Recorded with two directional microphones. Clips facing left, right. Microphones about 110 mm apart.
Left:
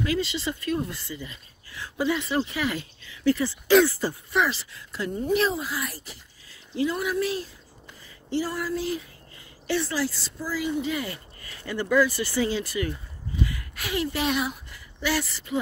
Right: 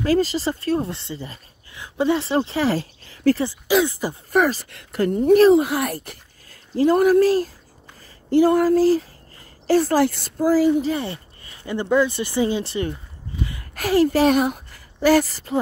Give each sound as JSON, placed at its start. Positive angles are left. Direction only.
{"t": 0.0, "sound": "speech", "side_deg": -35}
{"t": 3.8, "sound": "speech", "side_deg": -20}
{"t": 4.3, "sound": "speech", "side_deg": -45}
{"t": 4.7, "sound": "speech", "side_deg": -60}
{"t": 6.7, "sound": "speech", "side_deg": -45}
{"t": 13.7, "sound": "speech", "side_deg": -45}